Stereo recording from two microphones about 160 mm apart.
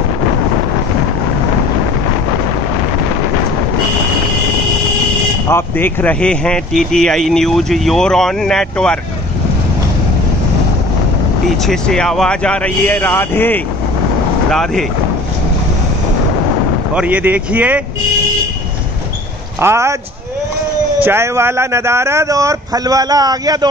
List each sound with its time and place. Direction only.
5.5 s speech: 15° left (ahead or behind)
11.4 s speech: centre (ahead or behind)
14.5 s speech: centre (ahead or behind)
16.9 s speech: 10° right (ahead or behind)
19.6 s speech: 15° right (ahead or behind)
21.0 s speech: 15° right (ahead or behind)